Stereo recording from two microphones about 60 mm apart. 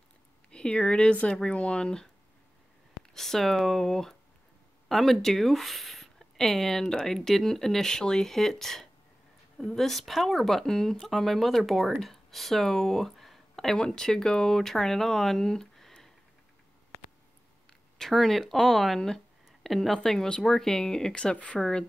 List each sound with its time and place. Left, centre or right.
0.5 s speech: centre
3.2 s speech: centre
17.6 s speech: centre
21.5 s speech: centre